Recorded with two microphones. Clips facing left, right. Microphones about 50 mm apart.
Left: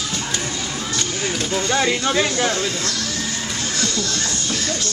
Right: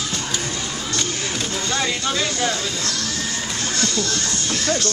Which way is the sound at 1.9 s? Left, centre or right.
Left.